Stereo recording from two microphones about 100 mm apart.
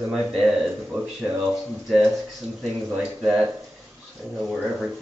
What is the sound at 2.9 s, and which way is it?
Speech, 10° right (ahead or behind).